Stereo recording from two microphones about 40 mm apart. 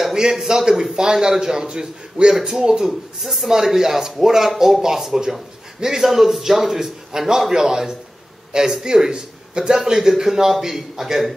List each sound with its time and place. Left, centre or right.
0.0 s a man's voice: centre
2.9 s a man's voice: centre